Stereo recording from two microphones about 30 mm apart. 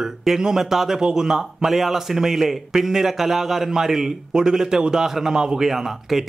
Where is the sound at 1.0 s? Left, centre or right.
Right.